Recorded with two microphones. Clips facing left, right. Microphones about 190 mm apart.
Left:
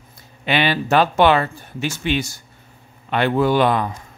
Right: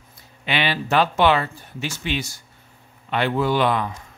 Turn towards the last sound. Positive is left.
turn(degrees=45)  # may be behind; listen again after turning